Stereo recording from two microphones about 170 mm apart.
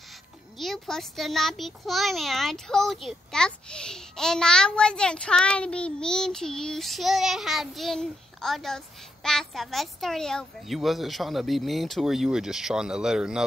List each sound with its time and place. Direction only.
0.6 s a child's voice: centre (ahead or behind)